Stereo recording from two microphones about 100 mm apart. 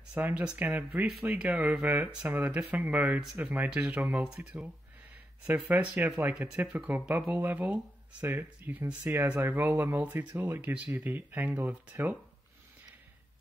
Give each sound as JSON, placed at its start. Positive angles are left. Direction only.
{"t": 0.1, "sound": "speech", "side_deg": -15}